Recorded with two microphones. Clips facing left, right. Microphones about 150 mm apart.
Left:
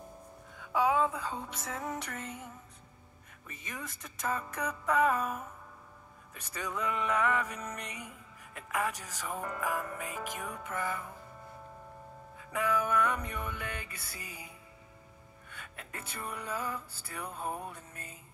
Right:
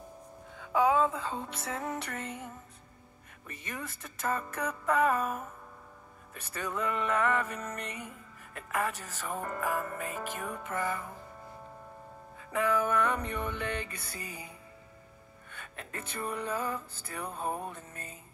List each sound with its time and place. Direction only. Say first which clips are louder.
0.8 s a sound: right 2 dB; 15° left (ahead or behind)
1.6 s music: right 2 dB; centre (ahead or behind)
2.1 s music: right 3 dB; 60° right (ahead or behind)
3.4 s music: right 3 dB; 5° left (ahead or behind)
6.3 s music: right 2 dB; 10° left (ahead or behind)
12.5 s music: right 2 dB; 10° left (ahead or behind)
15.5 s music: right 3 dB; 10° left (ahead or behind)
17.5 s music: right 3 dB; 30° right (ahead or behind)
17.7 s music: right 3 dB; 10° left (ahead or behind)